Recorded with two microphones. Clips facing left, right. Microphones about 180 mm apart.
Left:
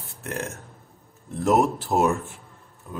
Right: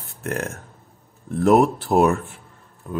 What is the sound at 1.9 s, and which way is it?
Speech, 90° right.